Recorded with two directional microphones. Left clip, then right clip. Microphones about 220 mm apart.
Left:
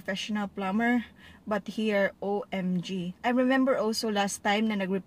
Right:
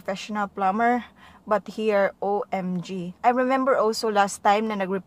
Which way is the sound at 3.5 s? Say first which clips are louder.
Right 5 dB; 50° right (ahead or behind).